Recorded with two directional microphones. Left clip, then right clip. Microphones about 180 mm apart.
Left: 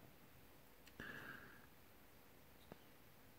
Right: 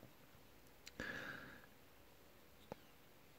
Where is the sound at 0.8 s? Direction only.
25° right (ahead or behind).